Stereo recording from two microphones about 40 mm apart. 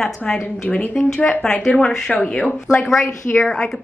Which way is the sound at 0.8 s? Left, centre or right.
Left.